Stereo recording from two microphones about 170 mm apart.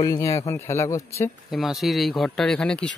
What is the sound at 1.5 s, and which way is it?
Speech, centre (ahead or behind).